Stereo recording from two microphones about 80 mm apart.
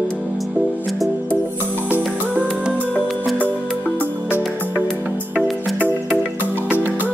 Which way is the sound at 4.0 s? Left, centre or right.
Right.